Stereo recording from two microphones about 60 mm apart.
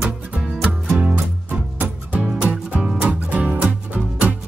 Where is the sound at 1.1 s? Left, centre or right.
Right.